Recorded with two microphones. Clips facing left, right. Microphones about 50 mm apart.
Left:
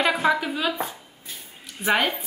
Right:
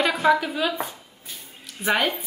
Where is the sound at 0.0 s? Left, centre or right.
Centre.